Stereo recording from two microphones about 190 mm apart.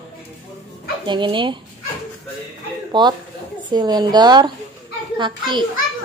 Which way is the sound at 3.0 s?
20° right (ahead or behind).